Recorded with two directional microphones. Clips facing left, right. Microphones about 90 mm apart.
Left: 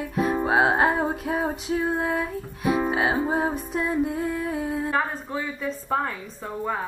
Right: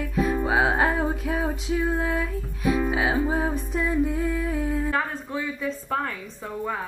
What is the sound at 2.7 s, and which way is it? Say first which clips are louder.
Music: left 1 dB; 40° left (ahead or behind).